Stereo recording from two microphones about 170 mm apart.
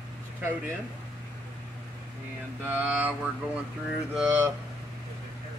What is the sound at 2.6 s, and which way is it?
Mantra, 10° right (ahead or behind).